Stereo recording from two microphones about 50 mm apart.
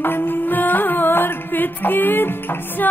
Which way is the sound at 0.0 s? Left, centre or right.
Left.